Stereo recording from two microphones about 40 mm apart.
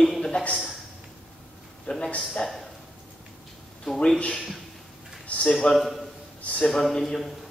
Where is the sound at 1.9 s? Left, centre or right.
Left.